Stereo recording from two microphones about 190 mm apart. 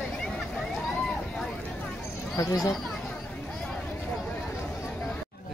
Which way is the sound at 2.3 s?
20° left (ahead or behind).